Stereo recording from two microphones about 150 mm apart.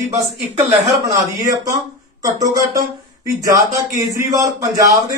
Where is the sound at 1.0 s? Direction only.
25° right (ahead or behind).